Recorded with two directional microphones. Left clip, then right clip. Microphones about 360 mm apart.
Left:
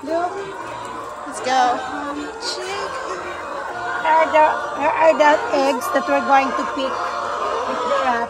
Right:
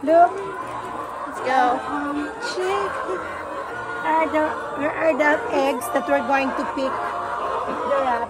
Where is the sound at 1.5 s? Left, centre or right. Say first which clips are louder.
Left 2 dB; centre.